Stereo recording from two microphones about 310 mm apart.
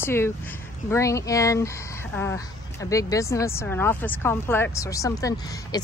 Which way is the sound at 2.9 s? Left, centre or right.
Centre.